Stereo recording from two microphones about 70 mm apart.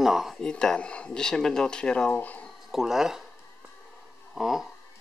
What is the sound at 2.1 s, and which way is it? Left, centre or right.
Speech, left.